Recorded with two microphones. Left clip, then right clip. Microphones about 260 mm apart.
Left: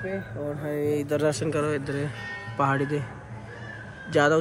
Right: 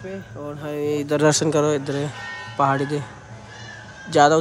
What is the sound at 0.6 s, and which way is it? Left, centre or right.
Speech, right.